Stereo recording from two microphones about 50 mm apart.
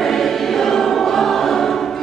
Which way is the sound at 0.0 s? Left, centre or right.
Centre.